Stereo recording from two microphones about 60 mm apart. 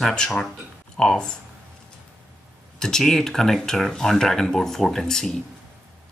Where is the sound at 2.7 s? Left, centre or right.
Centre.